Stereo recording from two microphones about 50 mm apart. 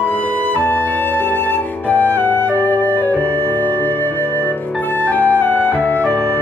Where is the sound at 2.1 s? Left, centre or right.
Left.